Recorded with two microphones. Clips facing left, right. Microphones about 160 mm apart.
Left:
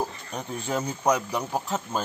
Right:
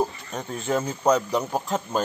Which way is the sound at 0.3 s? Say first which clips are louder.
Right 3 dB; 15° left (ahead or behind).